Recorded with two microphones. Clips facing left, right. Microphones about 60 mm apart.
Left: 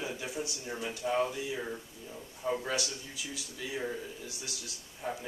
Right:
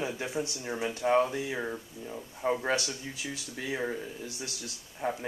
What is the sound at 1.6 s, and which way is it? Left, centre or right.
Speech, right.